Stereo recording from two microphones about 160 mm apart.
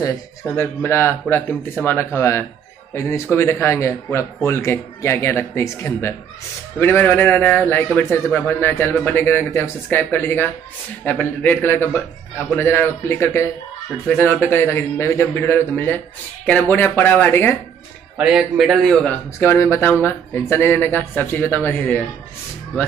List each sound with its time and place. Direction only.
0.0 s a man's voice: 15° left (ahead or behind)
18.1 s a man's voice: 5° right (ahead or behind); by 22.0 s 10° left (ahead or behind)